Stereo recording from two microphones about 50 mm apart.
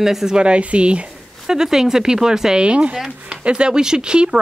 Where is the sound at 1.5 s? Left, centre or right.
Centre.